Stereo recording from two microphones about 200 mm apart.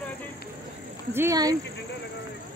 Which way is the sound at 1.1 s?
15° right (ahead or behind).